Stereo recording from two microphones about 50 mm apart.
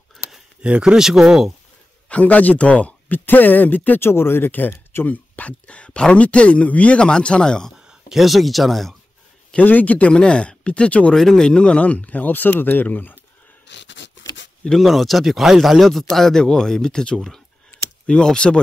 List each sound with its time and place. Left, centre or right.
0.6 s speech: right
0.9 s speech: centre
2.0 s speech: left
4.0 s speech: left
5.0 s speech: left; by 7.7 s centre
8.1 s speech: centre
9.7 s speech: left
11.1 s speech: centre
11.4 s speech: centre; by 13.2 s left
14.8 s speech: centre